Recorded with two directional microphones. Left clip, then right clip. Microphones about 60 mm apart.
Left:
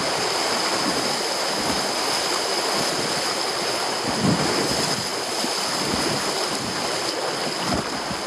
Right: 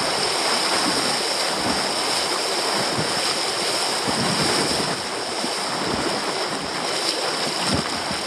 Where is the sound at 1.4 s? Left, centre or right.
Centre.